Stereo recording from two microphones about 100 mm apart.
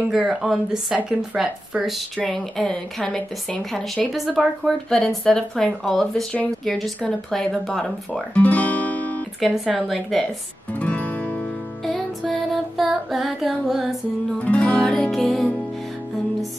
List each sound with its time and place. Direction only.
0.1 s speech: 5° right (ahead or behind)
8.4 s music: 15° left (ahead or behind)
9.4 s speech: centre (ahead or behind)
10.8 s music: 15° left (ahead or behind)
11.8 s music: 5° left (ahead or behind)
14.4 s music: 15° left (ahead or behind)